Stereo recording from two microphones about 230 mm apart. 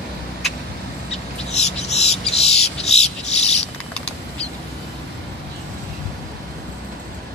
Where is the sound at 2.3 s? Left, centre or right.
Left.